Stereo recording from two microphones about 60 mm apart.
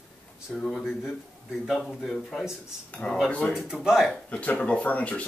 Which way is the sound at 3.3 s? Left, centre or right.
Left.